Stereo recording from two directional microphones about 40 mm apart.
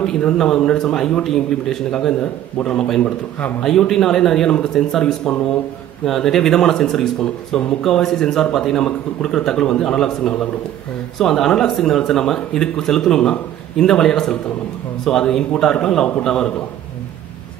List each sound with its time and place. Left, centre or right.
0.0 s speech: centre
3.6 s speech: centre
5.0 s speech: left
6.0 s speech: centre